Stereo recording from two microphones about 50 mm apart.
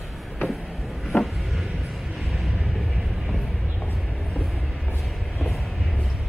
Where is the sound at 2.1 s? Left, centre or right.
Centre.